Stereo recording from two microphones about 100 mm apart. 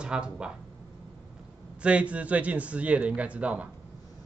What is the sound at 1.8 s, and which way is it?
Speech, 10° right (ahead or behind).